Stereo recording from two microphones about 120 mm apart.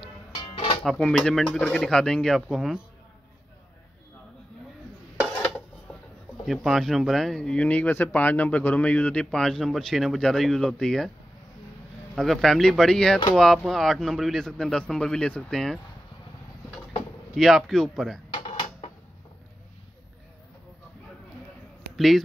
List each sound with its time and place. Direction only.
0.0 s music: 45° left (ahead or behind)
0.8 s speech: 5° left (ahead or behind)
6.4 s speech: centre (ahead or behind)
12.2 s speech: centre (ahead or behind)
17.4 s speech: centre (ahead or behind)
18.3 s drawer open or close: 40° left (ahead or behind)
21.9 s speech: centre (ahead or behind)